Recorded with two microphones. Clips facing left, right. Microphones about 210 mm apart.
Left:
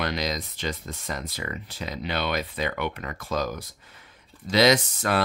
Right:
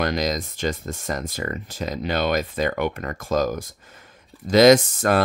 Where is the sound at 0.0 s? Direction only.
45° right (ahead or behind).